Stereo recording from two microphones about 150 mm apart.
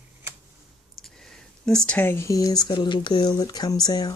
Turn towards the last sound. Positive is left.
turn(degrees=25)  # may be behind; listen again after turning